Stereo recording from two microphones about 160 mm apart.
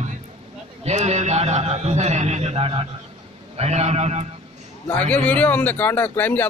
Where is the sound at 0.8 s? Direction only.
45° right (ahead or behind).